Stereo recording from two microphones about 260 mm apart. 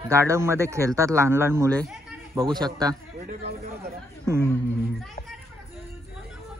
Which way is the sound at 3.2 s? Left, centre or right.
Right.